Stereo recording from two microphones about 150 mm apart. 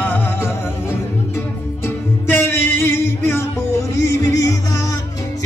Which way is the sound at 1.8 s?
15° left (ahead or behind).